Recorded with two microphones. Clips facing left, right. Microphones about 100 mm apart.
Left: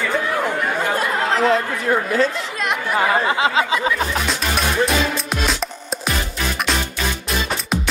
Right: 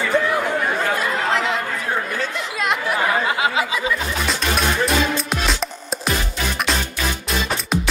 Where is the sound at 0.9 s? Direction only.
40° left (ahead or behind).